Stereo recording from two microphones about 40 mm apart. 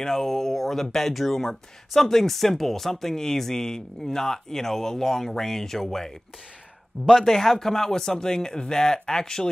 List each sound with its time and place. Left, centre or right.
0.0 s speech: centre
7.1 s speech: centre